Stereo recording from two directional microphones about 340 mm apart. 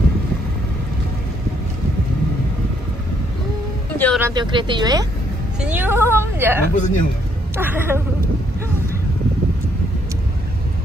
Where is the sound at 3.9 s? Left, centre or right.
Centre.